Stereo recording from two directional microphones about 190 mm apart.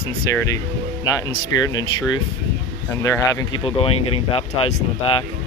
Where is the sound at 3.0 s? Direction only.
15° left (ahead or behind).